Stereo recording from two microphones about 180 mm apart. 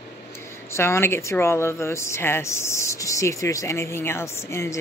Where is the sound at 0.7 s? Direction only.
15° left (ahead or behind).